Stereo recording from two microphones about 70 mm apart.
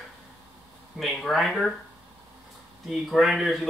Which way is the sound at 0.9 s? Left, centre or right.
Centre.